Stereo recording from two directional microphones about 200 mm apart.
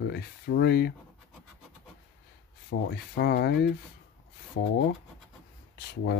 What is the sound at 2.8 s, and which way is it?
Speech, 55° left (ahead or behind).